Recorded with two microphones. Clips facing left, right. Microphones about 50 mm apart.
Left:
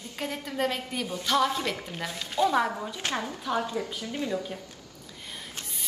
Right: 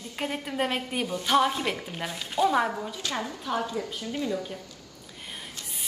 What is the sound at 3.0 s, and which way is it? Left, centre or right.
A woman's voice, left.